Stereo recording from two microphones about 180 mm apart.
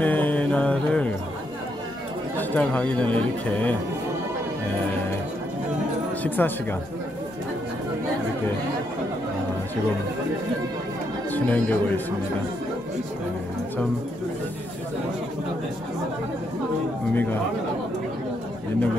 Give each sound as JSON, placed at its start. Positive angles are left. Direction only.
{"t": 0.0, "sound": "mantra", "side_deg": 10}
{"t": 2.3, "sound": "speech", "side_deg": 10}
{"t": 6.2, "sound": "speech", "side_deg": 10}
{"t": 11.3, "sound": "speech", "side_deg": 10}
{"t": 17.1, "sound": "speech", "side_deg": 10}